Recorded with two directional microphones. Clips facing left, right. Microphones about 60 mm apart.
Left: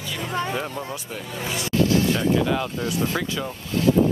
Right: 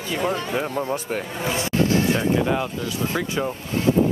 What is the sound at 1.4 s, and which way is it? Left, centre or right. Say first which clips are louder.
Speech: even; right.